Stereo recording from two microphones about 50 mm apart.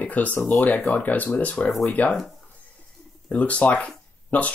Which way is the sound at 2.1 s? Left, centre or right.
Centre.